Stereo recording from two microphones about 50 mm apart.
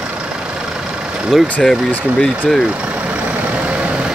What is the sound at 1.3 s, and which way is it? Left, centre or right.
Speech, centre.